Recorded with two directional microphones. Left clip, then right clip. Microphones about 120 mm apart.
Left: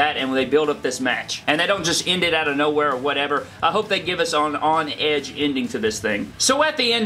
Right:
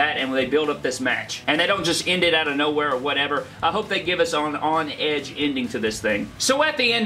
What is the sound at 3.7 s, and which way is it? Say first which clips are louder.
Speech: left 2 dB; 20° left (ahead or behind).